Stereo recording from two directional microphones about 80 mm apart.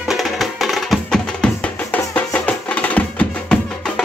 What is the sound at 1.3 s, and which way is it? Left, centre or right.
Music, centre.